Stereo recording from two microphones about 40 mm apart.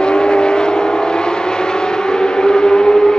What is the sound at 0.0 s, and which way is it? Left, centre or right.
Vehicle, left.